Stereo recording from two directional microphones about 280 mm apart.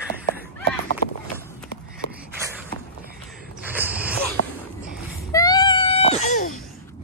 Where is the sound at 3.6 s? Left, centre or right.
Centre.